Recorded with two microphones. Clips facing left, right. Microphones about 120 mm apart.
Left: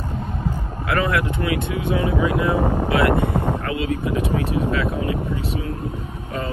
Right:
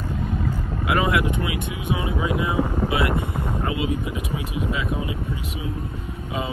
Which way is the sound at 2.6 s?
50° left (ahead or behind).